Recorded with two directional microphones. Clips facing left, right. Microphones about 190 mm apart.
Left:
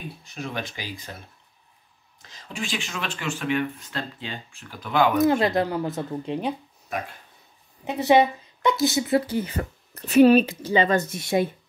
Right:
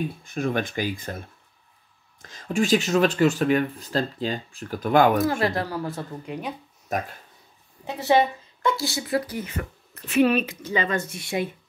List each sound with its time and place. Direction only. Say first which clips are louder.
0.2 s speech: right 5 dB; 50° right (ahead or behind)
2.2 s speech: right 10 dB; 50° right (ahead or behind)
5.2 s speech: left 4 dB; 20° left (ahead or behind)
6.9 s speech: right 3 dB; 40° right (ahead or behind)
7.8 s a woman's voice: left 2 dB; 20° left (ahead or behind); by 11.4 s 40° left (ahead or behind)